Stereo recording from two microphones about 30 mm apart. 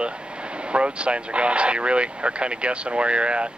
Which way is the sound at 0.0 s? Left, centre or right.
Right.